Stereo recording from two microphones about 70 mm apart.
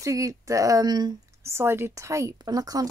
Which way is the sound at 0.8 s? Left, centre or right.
Right.